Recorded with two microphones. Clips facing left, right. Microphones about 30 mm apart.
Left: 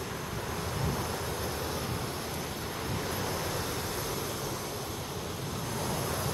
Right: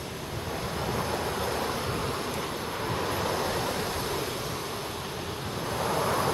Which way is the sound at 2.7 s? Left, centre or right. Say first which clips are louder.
Right 5 dB; right.